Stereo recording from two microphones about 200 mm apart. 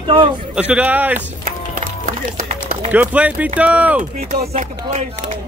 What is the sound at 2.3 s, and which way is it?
Run, 40° right (ahead or behind).